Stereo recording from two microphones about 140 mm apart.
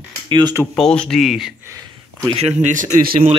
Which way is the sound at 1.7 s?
25° right (ahead or behind).